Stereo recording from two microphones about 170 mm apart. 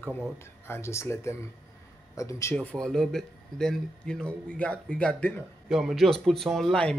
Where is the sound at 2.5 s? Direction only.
5° left (ahead or behind).